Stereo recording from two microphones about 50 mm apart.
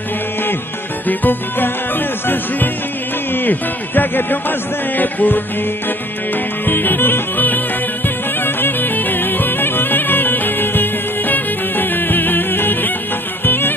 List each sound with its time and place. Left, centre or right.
1.0 s music: left
6.6 s music: left